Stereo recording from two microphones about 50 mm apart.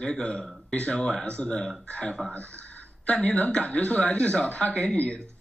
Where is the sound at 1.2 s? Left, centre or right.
Left.